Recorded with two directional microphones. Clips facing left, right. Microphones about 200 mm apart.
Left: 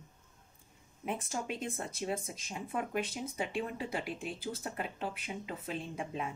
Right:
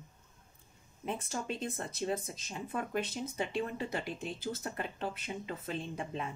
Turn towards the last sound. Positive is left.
turn(degrees=10)  # may be behind; listen again after turning